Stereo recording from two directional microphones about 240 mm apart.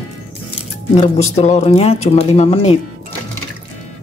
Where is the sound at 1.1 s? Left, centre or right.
Left.